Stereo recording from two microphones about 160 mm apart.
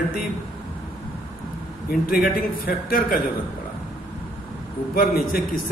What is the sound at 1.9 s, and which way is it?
A man's voice, 65° left (ahead or behind).